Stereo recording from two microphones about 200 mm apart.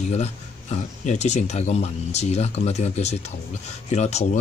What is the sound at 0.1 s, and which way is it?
Speech, 35° left (ahead or behind).